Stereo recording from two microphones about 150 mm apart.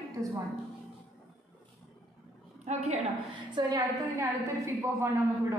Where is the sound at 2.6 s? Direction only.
50° right (ahead or behind).